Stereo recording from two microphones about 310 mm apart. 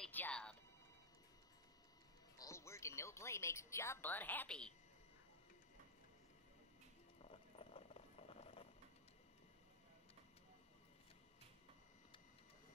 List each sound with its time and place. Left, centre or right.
0.0 s telephone: centre
2.3 s speech: centre
7.2 s clip-clop: centre